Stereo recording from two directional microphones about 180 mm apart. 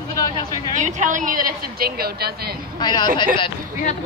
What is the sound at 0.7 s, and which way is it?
A woman's voice, 45° right (ahead or behind).